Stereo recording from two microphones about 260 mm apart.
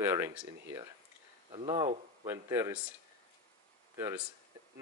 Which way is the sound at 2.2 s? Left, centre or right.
Centre.